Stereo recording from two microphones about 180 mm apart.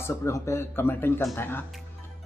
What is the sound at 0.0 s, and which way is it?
A man's voice, 15° left (ahead or behind).